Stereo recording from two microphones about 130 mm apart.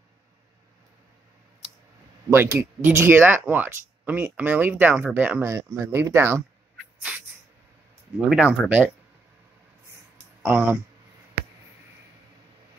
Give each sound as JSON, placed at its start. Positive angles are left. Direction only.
{"t": 2.3, "sound": "speech", "side_deg": -20}
{"t": 5.4, "sound": "speech", "side_deg": -25}
{"t": 7.0, "sound": "a sound", "side_deg": -10}
{"t": 8.3, "sound": "speech", "side_deg": -5}
{"t": 10.4, "sound": "speech", "side_deg": -15}